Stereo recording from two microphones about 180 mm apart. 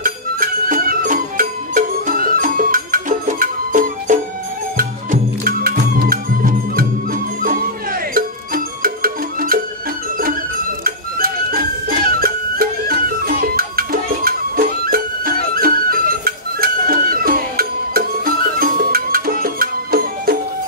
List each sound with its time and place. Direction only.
0.0 s music: 50° right (ahead or behind)
10.8 s music: 55° right (ahead or behind)